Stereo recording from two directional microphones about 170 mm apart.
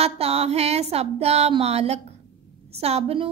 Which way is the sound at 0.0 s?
35° right (ahead or behind).